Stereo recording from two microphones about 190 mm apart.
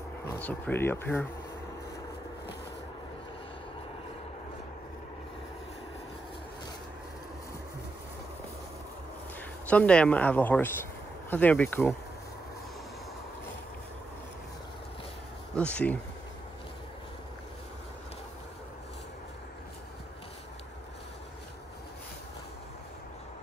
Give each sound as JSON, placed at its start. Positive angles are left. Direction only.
{"t": 0.4, "sound": "speech", "side_deg": 10}
{"t": 9.7, "sound": "speech", "side_deg": 5}
{"t": 15.5, "sound": "speech", "side_deg": 5}